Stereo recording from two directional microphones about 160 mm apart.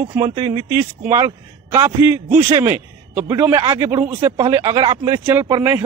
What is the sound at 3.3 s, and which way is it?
Speech, 15° right (ahead or behind).